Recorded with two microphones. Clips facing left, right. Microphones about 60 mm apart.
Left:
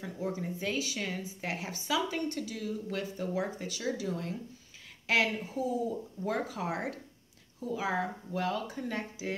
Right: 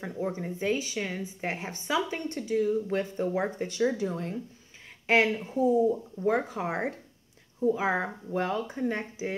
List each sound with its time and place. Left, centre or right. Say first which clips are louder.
0.0 s speech: right 3 dB; right
1.5 s speech: right 2 dB; right